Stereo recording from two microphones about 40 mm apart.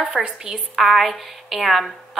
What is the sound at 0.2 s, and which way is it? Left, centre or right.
Speech, centre.